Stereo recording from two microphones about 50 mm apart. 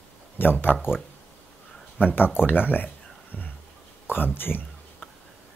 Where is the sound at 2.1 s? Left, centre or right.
Left.